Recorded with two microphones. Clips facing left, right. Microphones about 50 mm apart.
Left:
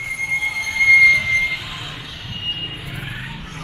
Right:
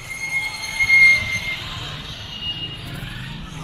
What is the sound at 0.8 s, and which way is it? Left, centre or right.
Vehicle, centre.